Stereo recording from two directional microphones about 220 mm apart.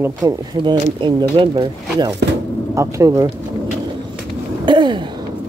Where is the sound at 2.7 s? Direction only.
15° right (ahead or behind).